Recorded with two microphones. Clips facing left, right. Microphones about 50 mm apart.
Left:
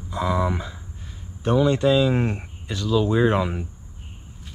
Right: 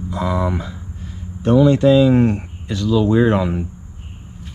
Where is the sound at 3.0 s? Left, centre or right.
Right.